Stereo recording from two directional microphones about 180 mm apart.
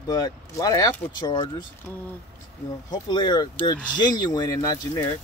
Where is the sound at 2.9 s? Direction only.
25° left (ahead or behind).